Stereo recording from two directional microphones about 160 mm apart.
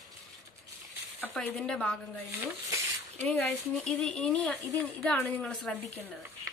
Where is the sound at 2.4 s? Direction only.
20° right (ahead or behind).